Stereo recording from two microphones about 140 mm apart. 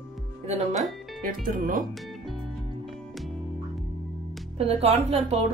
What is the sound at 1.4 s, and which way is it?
Speech, 85° right.